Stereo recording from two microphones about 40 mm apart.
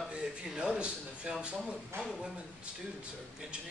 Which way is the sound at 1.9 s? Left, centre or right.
Right.